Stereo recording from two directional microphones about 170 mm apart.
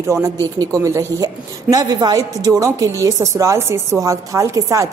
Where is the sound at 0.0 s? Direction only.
15° right (ahead or behind).